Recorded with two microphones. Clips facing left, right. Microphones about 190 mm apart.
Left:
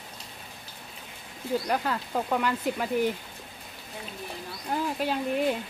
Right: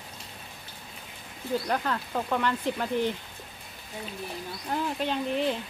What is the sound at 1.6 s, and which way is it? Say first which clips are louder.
Speech: left 1 dB; 5° left (ahead or behind).